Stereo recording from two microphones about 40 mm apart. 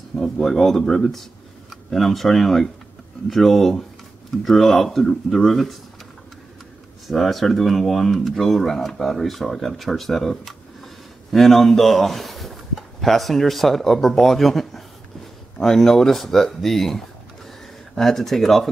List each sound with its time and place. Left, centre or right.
0.2 s speech: centre
7.1 s speech: centre